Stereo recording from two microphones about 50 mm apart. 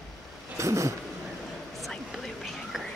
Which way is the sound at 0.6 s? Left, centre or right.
Right.